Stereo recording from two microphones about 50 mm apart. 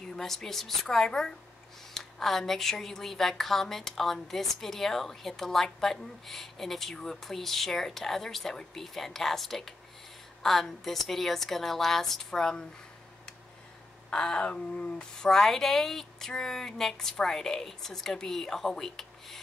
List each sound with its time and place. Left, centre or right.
0.0 s speech: centre
14.1 s speech: centre